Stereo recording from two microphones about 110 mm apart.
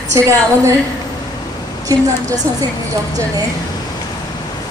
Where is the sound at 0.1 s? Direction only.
30° right (ahead or behind).